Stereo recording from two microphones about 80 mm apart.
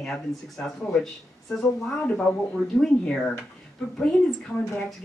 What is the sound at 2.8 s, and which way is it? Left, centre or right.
Speech, centre.